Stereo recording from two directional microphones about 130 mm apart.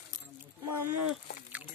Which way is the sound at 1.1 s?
10° right (ahead or behind).